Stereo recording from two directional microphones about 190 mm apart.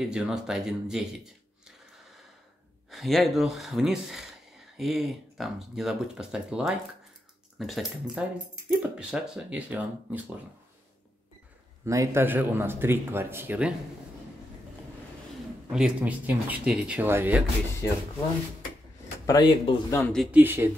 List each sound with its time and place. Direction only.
0.0 s speech: 5° right (ahead or behind)
2.9 s speech: centre (ahead or behind)
11.8 s speech: 15° right (ahead or behind)
15.7 s speech: 5° right (ahead or behind)
19.2 s speech: 20° left (ahead or behind)
20.0 s speech: 5° left (ahead or behind)
20.2 s speech: 10° right (ahead or behind)